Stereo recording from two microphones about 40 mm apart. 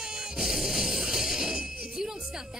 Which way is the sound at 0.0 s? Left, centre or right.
Centre.